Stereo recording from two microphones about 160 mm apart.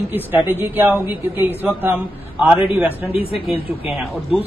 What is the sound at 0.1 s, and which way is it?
A man's voice, 10° right (ahead or behind).